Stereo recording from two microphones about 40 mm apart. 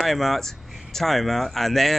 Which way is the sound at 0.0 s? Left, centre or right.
Centre.